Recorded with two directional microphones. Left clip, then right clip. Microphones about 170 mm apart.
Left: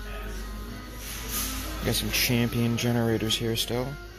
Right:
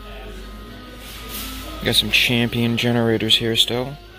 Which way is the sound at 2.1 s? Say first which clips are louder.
Right 9 dB; 25° right (ahead or behind).